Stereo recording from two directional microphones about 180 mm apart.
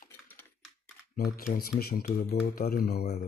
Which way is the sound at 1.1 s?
55° left (ahead or behind).